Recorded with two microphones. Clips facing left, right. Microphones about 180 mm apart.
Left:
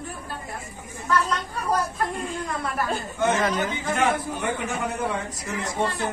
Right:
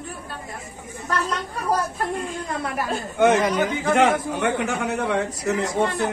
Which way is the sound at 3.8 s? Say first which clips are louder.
Right 6 dB; 70° right (ahead or behind).